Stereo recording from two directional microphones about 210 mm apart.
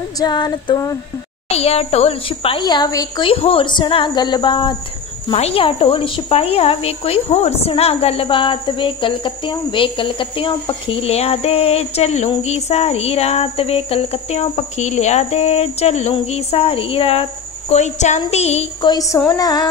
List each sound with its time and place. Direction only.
0.2 s speech: 20° left (ahead or behind)
1.5 s speech: 30° left (ahead or behind)